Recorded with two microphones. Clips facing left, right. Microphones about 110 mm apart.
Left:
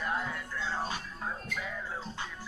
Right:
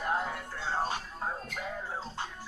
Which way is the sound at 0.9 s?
40° right (ahead or behind).